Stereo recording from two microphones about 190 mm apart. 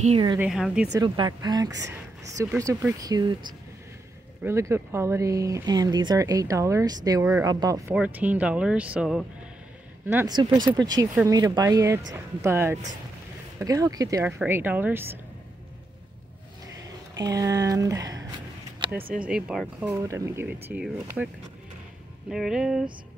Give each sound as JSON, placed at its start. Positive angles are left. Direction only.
{"t": 0.0, "sound": "speech", "side_deg": -30}
{"t": 0.4, "sound": "speech", "side_deg": -5}
{"t": 0.9, "sound": "speech", "side_deg": -25}
{"t": 7.9, "sound": "speech", "side_deg": -5}
{"t": 10.0, "sound": "speech", "side_deg": -15}
{"t": 17.2, "sound": "speech", "side_deg": -15}
{"t": 19.9, "sound": "speech", "side_deg": -15}
{"t": 22.3, "sound": "speech", "side_deg": 0}